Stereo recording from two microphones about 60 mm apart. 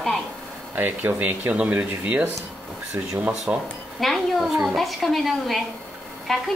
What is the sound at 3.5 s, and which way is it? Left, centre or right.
Speech, right.